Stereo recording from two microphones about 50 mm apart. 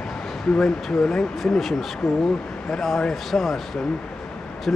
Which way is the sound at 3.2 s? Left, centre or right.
Centre.